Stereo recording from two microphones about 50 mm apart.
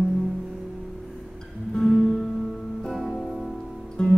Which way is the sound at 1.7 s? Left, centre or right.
Centre.